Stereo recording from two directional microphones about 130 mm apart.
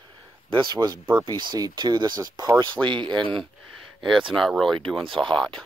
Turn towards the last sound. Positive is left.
turn(degrees=5)  # may be behind; listen again after turning